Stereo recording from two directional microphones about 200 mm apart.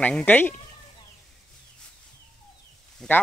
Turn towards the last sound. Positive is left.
turn(degrees=5)  # may be behind; listen again after turning